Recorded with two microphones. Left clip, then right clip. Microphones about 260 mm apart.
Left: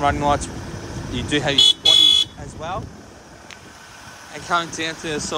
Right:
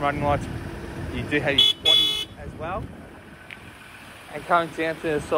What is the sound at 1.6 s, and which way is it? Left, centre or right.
Car alarm, left.